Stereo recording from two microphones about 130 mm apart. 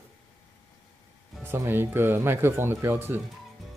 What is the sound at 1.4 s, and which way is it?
Speech, 15° right (ahead or behind).